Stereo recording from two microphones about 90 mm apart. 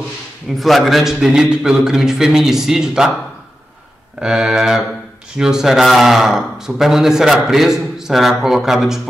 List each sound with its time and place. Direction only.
0.6 s a man's voice: centre (ahead or behind)
4.2 s a man's voice: 10° right (ahead or behind)